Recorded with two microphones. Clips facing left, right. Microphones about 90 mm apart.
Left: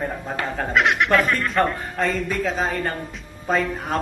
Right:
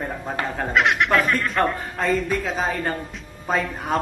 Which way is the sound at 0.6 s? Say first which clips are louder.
Even; centre (ahead or behind).